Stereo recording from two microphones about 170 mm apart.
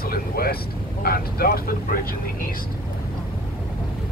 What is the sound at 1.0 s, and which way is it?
Speech, 60° left (ahead or behind).